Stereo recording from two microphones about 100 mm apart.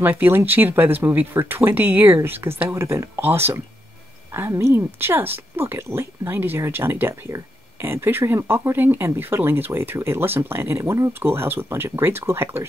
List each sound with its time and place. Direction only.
0.0 s speech: 20° right (ahead or behind)